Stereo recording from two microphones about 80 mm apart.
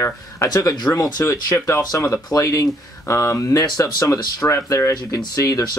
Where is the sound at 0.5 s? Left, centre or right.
Left.